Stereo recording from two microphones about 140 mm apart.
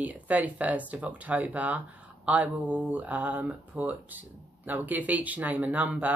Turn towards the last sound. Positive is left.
turn(degrees=-10)  # may be behind; listen again after turning